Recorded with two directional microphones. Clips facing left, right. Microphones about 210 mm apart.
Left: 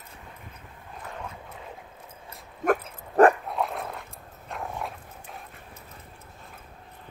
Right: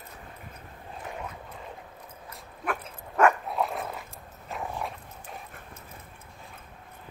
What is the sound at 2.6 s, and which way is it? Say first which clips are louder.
Dog: left 9 dB; 45° left (ahead or behind).